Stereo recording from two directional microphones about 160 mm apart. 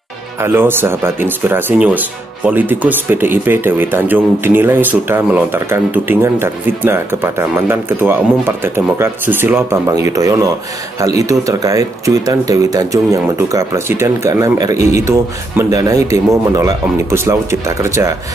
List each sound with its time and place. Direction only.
0.4 s a man's voice: 15° right (ahead or behind)